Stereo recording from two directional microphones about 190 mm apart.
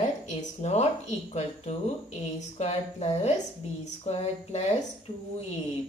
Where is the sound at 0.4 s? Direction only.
35° left (ahead or behind).